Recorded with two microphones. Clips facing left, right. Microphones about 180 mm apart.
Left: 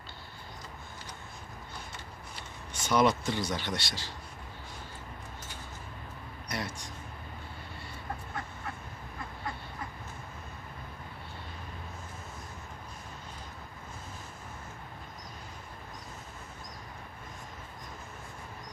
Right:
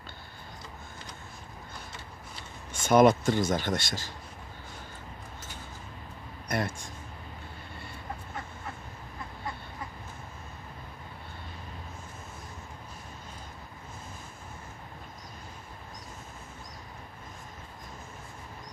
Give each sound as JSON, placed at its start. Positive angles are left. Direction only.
{"t": 2.7, "sound": "speech", "side_deg": -50}
{"t": 6.5, "sound": "speech", "side_deg": -50}